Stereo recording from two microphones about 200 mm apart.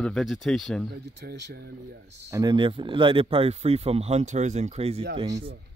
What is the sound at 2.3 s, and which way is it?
Speech, 20° right (ahead or behind).